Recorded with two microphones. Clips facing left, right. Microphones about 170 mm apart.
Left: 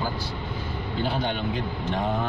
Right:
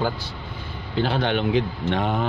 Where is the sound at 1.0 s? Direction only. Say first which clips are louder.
Right 6 dB; 80° right.